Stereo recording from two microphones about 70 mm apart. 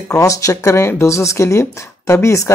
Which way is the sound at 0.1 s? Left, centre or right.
Left.